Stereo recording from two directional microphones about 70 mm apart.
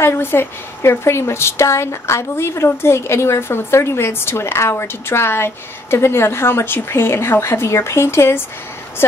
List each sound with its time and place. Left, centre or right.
0.0 s a woman's voice: left